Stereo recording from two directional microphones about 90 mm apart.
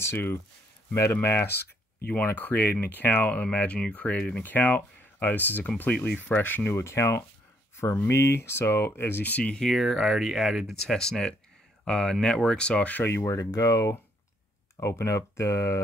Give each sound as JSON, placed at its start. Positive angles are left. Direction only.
{"t": 0.0, "sound": "speech", "side_deg": 30}
{"t": 13.1, "sound": "speech", "side_deg": 35}